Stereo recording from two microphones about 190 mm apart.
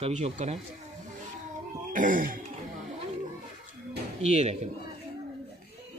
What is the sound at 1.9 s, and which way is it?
Music, 45° right (ahead or behind).